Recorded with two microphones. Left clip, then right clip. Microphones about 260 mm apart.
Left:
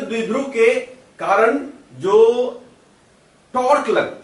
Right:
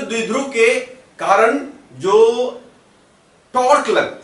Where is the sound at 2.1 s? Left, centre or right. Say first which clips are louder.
Right 1 dB; left.